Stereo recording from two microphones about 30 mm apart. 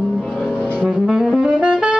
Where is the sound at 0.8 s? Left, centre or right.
Right.